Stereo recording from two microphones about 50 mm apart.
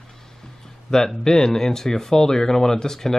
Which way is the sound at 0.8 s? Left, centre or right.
Centre.